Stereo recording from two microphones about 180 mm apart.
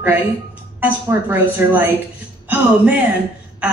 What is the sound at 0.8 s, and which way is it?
A woman's voice, 10° right (ahead or behind).